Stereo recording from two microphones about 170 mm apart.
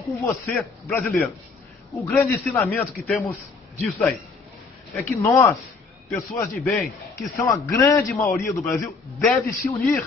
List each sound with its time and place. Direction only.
0.1 s a man's voice: 10° left (ahead or behind)
4.9 s a man's voice: 15° left (ahead or behind)
7.2 s a man's voice: 20° left (ahead or behind)